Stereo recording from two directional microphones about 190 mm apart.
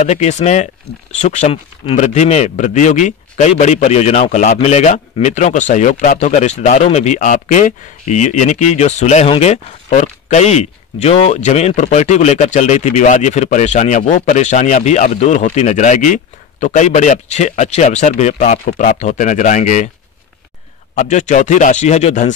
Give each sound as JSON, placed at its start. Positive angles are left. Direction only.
{"t": 0.0, "sound": "speech", "side_deg": 35}
{"t": 20.9, "sound": "speech", "side_deg": 40}